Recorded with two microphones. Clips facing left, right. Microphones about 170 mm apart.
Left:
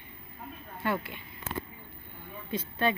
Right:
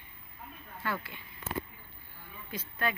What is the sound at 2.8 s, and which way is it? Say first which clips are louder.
Speech: left 5 dB; 25° left (ahead or behind).